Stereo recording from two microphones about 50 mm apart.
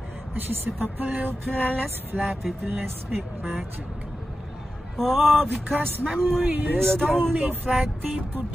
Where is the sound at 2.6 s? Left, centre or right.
Right.